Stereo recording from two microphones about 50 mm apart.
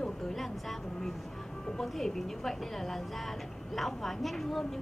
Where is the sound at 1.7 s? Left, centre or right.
Centre.